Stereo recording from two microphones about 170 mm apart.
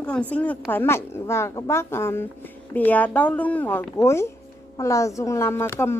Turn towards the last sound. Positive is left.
turn(degrees=15)  # may be behind; listen again after turning